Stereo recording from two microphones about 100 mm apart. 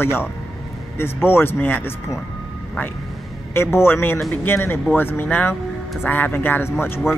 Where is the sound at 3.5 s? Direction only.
25° left (ahead or behind).